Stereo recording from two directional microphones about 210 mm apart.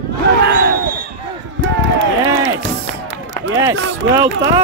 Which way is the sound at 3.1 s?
60° right (ahead or behind).